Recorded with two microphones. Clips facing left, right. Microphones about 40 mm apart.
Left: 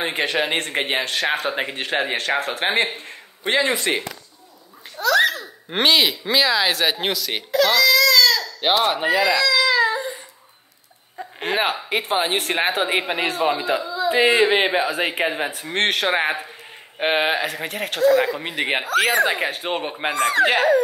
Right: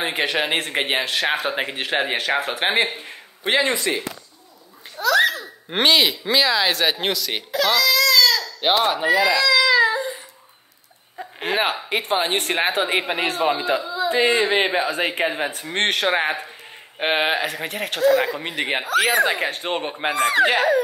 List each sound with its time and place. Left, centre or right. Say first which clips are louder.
0.0 s speech: even; centre
3.9 s speech: left 1 dB; left
4.9 s a child's voice: even; centre
9.6 s baby cry: right 2 dB; centre
9.9 s babbling: right 1 dB; centre
11.1 s speech: even; centre